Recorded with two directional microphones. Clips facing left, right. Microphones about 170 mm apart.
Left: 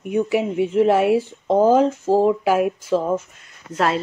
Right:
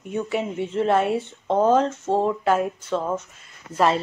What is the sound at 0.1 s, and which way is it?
Speech, 70° left (ahead or behind).